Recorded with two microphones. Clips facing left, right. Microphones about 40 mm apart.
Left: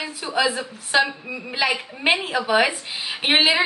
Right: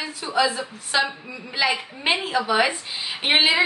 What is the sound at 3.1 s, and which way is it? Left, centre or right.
Speech, centre.